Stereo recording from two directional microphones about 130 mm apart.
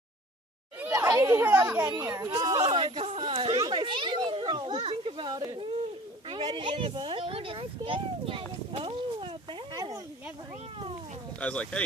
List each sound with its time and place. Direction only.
0.9 s speech: 25° right (ahead or behind)
2.6 s children playing: 40° right (ahead or behind)
6.2 s a child's voice: 40° right (ahead or behind)
11.3 s speech: 10° left (ahead or behind)